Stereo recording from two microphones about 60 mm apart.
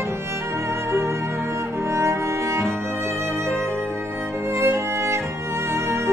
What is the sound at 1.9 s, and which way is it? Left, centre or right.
Music, right.